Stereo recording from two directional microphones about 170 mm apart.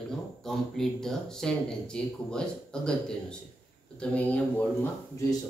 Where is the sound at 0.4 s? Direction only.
Centre (ahead or behind).